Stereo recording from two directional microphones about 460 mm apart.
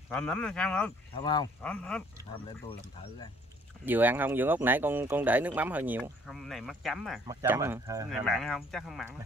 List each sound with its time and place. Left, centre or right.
0.1 s speech: centre
3.8 s speech: centre